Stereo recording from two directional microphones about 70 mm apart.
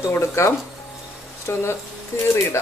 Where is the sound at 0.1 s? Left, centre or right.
Left.